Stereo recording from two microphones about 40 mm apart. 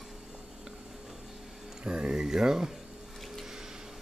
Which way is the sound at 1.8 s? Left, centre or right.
Right.